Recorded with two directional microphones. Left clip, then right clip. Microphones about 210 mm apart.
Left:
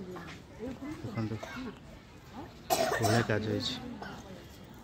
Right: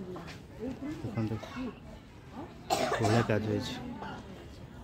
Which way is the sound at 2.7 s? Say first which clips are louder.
Left 1 dB; 45° left (ahead or behind).